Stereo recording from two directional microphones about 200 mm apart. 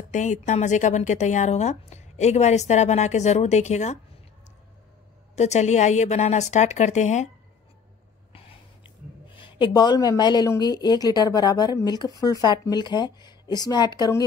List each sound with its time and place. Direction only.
0.1 s a woman's voice: 35° left (ahead or behind)
5.3 s a woman's voice: 35° left (ahead or behind)
8.3 s a sound: 30° left (ahead or behind)
9.3 s speech: 25° left (ahead or behind)